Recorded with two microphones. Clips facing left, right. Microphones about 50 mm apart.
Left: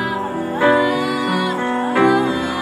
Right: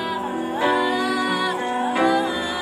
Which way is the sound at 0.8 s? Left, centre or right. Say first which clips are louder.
Left 3 dB; centre.